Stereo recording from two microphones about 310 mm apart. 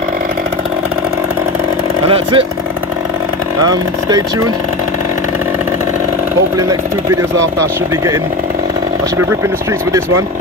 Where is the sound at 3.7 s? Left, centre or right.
Centre.